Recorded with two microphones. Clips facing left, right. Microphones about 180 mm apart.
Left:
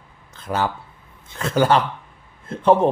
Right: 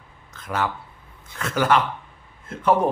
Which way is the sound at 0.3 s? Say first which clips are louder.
Left 3 dB; 30° left (ahead or behind).